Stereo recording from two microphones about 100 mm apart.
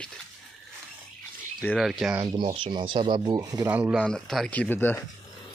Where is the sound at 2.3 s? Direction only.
55° right (ahead or behind).